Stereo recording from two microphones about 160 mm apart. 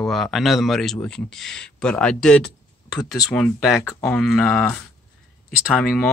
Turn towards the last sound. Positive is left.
turn(degrees=0)  # may be behind; listen again after turning